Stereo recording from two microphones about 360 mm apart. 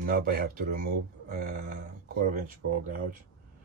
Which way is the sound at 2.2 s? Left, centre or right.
Right.